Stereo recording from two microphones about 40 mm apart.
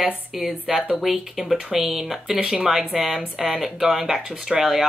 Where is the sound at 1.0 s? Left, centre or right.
Centre.